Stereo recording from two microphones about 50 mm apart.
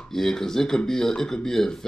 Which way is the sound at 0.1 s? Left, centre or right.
Centre.